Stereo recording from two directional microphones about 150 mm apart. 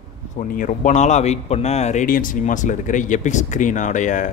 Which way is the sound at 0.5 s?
60° left (ahead or behind).